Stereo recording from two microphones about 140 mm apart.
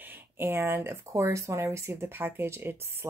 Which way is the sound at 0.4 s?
15° right (ahead or behind).